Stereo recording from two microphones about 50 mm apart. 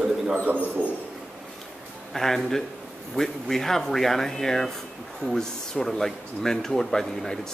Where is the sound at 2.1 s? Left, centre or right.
Centre.